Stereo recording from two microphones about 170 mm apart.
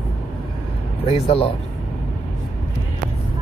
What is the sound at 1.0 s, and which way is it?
Speech, 35° left (ahead or behind).